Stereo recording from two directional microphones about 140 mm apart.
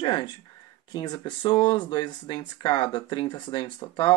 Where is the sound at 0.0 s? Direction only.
35° left (ahead or behind).